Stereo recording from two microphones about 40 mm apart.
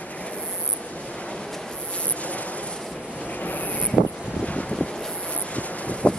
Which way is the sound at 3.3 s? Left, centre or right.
Left.